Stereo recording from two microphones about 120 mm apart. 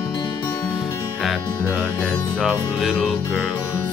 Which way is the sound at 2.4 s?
5° left (ahead or behind).